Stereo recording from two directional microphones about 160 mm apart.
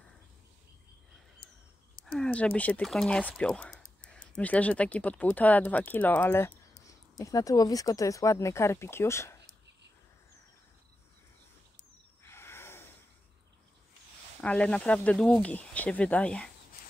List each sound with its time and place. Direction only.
2.1 s speech: 5° left (ahead or behind)
12.2 s a sound: 15° left (ahead or behind)
14.4 s speech: 5° left (ahead or behind)